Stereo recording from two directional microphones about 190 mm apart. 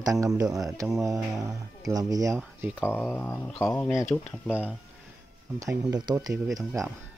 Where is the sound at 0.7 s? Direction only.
15° right (ahead or behind).